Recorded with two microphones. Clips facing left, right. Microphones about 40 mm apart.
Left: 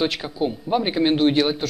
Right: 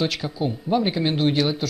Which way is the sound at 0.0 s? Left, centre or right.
Centre.